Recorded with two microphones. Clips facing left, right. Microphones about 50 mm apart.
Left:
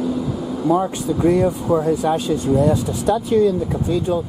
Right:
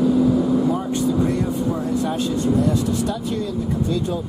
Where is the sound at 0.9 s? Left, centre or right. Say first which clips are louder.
Left 3 dB; centre.